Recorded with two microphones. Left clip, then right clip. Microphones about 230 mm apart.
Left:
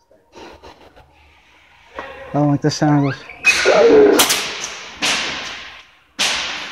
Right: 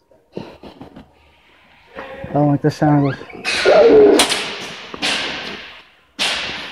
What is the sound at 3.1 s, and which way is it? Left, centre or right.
Bird, left.